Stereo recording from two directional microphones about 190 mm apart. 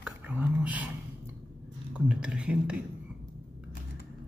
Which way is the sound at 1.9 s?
5° right (ahead or behind).